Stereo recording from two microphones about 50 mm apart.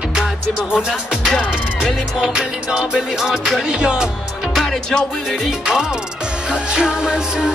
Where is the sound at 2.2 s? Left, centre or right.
Centre.